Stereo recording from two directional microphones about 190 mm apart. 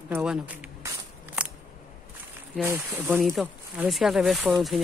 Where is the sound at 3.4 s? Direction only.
Centre (ahead or behind).